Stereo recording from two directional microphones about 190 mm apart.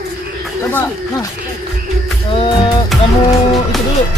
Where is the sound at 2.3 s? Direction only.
30° left (ahead or behind).